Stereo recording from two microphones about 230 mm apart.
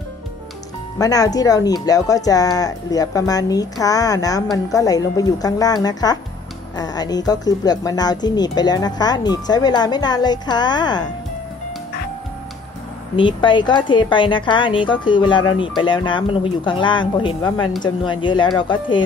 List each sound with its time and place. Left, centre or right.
0.9 s speech: centre
13.1 s a woman's voice: left